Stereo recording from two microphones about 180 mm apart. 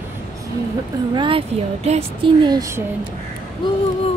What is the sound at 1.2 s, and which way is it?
Speech, 30° right (ahead or behind).